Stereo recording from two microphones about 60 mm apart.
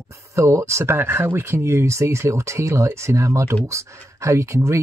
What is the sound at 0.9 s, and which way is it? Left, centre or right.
Speech, right.